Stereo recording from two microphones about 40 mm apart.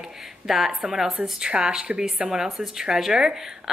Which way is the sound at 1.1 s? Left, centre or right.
Centre.